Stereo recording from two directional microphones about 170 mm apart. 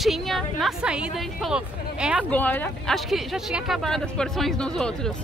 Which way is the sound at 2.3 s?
10° left (ahead or behind).